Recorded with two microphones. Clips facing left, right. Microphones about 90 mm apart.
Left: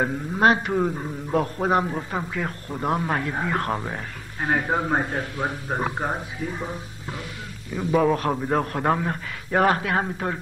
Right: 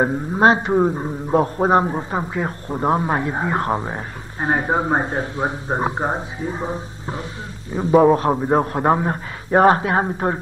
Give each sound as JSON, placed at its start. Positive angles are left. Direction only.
{"t": 0.0, "sound": "a man's voice", "side_deg": -30}